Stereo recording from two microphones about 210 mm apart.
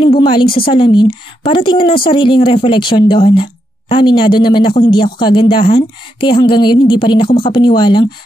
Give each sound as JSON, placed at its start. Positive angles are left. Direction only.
{"t": 0.0, "sound": "a woman's voice", "side_deg": 25}